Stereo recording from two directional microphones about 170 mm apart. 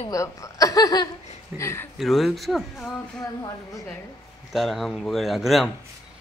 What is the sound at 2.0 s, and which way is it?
Speech, centre (ahead or behind).